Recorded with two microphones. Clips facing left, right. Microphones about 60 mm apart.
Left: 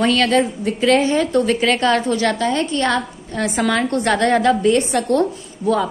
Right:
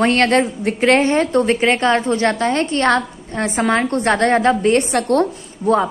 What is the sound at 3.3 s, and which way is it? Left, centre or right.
A woman's voice, right.